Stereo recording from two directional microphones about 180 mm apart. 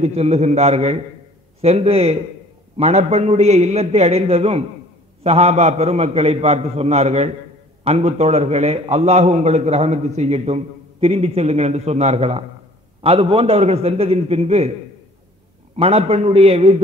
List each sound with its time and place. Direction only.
0.0 s a man's voice: 35° right (ahead or behind)
15.7 s a man's voice: 35° right (ahead or behind)